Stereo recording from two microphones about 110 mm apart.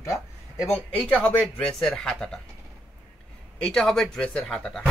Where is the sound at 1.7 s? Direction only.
5° left (ahead or behind).